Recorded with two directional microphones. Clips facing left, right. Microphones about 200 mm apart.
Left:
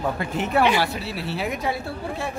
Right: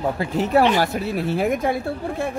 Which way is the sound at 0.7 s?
45° right (ahead or behind).